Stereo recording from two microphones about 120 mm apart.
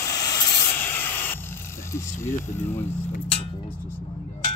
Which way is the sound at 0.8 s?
15° left (ahead or behind).